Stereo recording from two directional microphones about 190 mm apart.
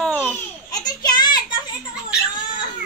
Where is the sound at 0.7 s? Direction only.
20° left (ahead or behind).